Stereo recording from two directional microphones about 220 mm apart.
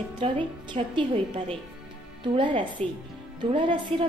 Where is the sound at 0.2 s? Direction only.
25° right (ahead or behind).